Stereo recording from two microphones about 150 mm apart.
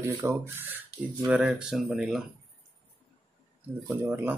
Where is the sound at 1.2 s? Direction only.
5° right (ahead or behind).